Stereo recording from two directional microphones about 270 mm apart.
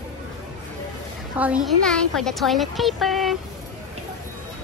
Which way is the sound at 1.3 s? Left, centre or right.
Centre.